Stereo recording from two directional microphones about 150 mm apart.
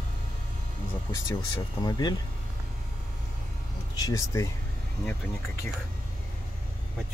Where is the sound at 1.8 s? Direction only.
25° left (ahead or behind).